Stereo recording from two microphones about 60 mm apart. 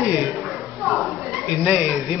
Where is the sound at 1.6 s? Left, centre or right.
Centre.